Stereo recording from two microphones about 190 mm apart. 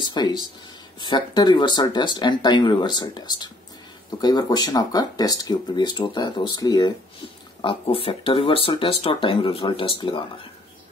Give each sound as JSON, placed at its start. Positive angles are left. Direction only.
{"t": 0.1, "sound": "speech", "side_deg": 20}